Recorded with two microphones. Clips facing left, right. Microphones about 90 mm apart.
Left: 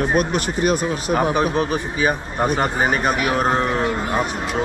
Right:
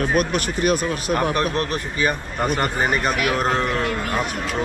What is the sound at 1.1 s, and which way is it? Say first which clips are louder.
A man's voice: left 3 dB; 10° left (ahead or behind).